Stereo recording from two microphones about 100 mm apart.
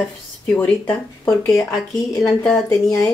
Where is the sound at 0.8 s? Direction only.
25° left (ahead or behind).